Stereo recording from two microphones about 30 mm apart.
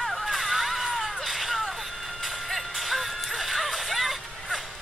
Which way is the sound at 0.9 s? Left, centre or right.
Centre.